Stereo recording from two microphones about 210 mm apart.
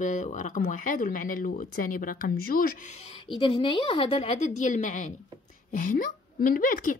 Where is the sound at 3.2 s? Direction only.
25° left (ahead or behind); by 6.9 s 40° left (ahead or behind).